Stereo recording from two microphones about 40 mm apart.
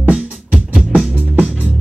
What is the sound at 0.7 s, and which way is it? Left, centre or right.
Music, centre.